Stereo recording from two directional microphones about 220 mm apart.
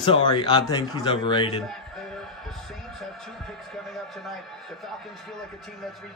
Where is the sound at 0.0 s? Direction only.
20° left (ahead or behind).